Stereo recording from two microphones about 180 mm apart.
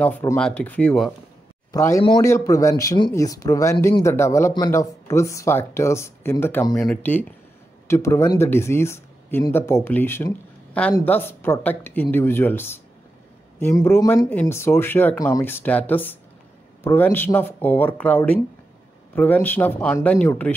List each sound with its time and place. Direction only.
0.0 s speech: 10° left (ahead or behind)
1.7 s speech: 15° left (ahead or behind)